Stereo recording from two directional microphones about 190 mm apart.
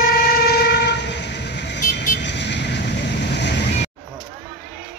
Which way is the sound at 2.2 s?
65° left (ahead or behind).